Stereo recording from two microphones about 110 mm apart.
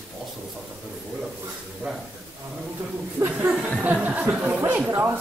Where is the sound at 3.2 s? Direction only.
15° right (ahead or behind).